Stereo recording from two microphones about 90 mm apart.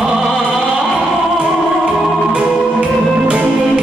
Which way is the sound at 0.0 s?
Centre (ahead or behind).